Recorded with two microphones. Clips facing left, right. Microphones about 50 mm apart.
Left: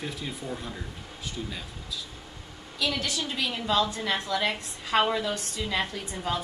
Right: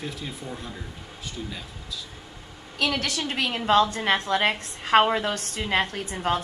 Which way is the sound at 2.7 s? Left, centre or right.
Right.